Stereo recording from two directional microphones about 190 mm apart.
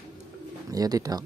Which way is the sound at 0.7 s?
20° right (ahead or behind).